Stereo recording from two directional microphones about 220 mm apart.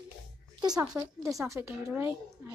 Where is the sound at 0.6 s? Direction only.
15° right (ahead or behind).